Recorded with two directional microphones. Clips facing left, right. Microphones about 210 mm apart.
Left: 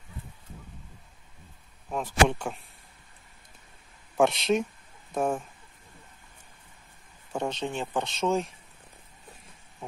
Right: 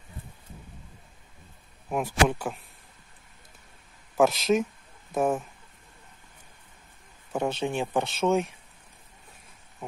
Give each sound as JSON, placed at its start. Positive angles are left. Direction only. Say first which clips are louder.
{"t": 1.9, "sound": "speech", "louder": "even", "side_deg": -10}
{"t": 4.2, "sound": "speech", "louder": "right 2 dB", "side_deg": 0}
{"t": 7.3, "sound": "speech", "louder": "right 3 dB", "side_deg": -10}